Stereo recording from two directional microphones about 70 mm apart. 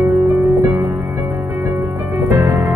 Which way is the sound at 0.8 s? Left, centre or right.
Right.